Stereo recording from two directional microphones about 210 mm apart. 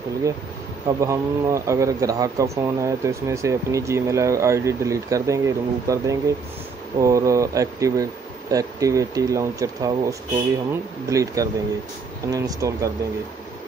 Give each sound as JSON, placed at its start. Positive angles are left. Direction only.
{"t": 1.0, "sound": "speech", "side_deg": -15}